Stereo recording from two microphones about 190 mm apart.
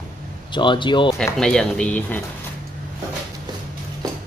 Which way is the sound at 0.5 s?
25° left (ahead or behind).